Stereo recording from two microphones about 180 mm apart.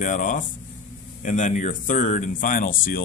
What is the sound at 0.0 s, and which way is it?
Speech, 45° left (ahead or behind).